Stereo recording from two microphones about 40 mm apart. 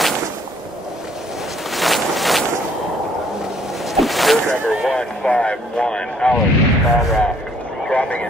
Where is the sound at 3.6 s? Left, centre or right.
Centre.